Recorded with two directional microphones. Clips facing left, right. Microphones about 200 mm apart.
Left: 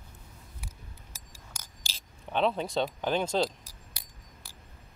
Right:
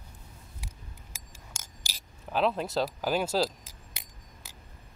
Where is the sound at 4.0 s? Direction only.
25° right (ahead or behind).